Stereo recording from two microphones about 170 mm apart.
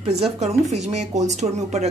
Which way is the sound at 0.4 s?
40° right (ahead or behind).